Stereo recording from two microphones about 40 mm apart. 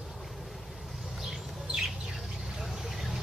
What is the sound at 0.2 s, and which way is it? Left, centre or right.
Bird, centre.